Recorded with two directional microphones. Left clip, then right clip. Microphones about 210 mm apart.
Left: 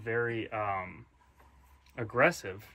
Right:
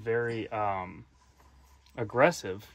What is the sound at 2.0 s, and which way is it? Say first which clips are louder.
Speech: right 2 dB; 55° right (ahead or behind).